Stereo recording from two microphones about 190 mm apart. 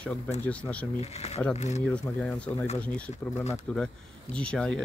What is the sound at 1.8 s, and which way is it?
Speech, 5° left (ahead or behind).